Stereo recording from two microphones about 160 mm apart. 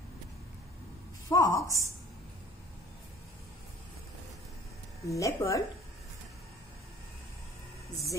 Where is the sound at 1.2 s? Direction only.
20° left (ahead or behind).